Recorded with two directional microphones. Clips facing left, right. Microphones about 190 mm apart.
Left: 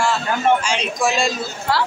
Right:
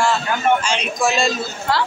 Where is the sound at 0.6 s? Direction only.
10° left (ahead or behind).